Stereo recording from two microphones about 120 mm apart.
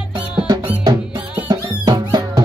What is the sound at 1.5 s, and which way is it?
Music, 35° right (ahead or behind).